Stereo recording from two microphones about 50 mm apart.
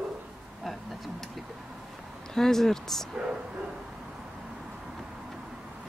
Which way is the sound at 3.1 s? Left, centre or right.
Centre.